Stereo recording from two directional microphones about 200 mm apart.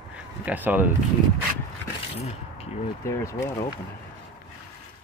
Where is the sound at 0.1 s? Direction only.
10° right (ahead or behind).